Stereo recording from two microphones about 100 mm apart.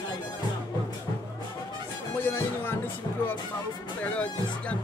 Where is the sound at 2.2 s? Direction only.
20° left (ahead or behind).